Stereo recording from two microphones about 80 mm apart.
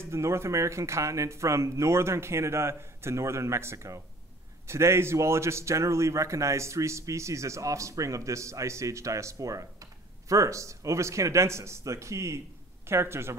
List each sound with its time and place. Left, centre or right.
0.0 s a man's voice: right